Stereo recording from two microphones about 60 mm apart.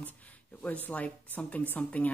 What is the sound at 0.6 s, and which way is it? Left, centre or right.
Speech, left.